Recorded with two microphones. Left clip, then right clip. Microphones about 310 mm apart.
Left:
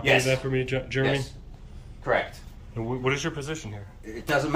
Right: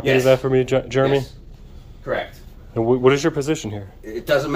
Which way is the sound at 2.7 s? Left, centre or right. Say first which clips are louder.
Right 12 dB; centre.